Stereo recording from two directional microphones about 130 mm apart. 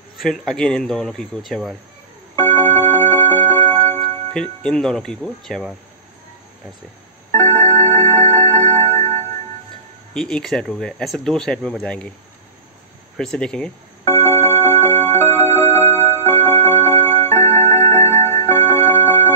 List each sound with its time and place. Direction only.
0.2 s speech: 5° left (ahead or behind)
2.3 s music: 15° left (ahead or behind)
3.9 s speech: 5° left (ahead or behind)
7.2 s music: 15° left (ahead or behind)
7.6 s music: 55° right (ahead or behind)
10.1 s speech: 5° left (ahead or behind)
13.2 s speech: 5° left (ahead or behind)
14.2 s music: 25° left (ahead or behind)
17.0 s music: 50° right (ahead or behind)
18.4 s music: 25° left (ahead or behind)